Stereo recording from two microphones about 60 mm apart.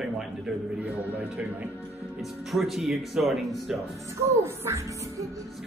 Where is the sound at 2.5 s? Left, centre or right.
Centre.